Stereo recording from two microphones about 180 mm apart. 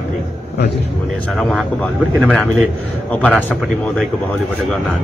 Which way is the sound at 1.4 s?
Centre (ahead or behind).